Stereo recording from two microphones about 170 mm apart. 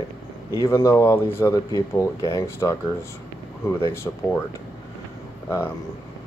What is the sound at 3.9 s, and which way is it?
Speech, 15° left (ahead or behind).